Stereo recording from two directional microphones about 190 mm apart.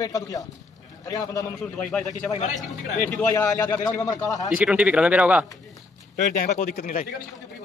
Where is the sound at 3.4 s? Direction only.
15° left (ahead or behind).